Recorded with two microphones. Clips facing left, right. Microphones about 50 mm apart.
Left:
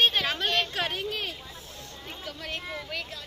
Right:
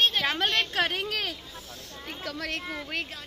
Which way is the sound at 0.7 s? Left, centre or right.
Right.